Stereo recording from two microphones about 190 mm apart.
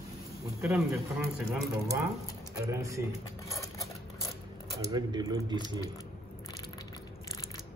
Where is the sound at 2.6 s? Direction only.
15° right (ahead or behind).